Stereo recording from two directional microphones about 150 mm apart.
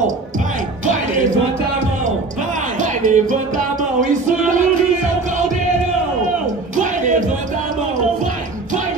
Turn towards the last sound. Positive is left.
turn(degrees=-60)  # may be behind; listen again after turning